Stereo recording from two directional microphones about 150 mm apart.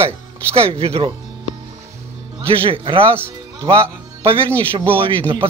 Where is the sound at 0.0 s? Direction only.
20° right (ahead or behind).